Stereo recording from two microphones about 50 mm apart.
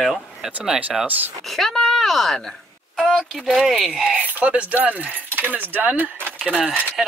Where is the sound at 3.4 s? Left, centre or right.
Centre.